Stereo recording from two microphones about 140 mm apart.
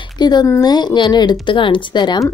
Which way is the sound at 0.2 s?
30° left (ahead or behind).